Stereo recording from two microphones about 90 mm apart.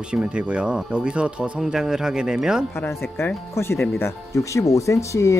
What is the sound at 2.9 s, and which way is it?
Speech, 25° left (ahead or behind).